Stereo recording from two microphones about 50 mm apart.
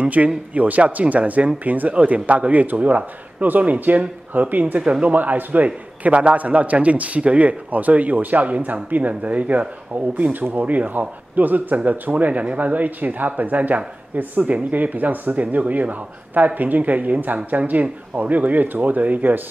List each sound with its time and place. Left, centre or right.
0.0 s a man's voice: right